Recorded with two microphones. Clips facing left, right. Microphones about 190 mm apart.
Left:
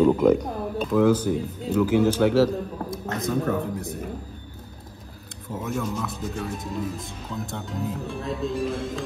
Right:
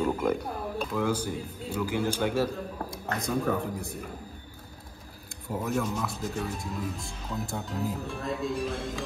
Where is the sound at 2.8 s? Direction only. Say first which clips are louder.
Left 4 dB; centre (ahead or behind).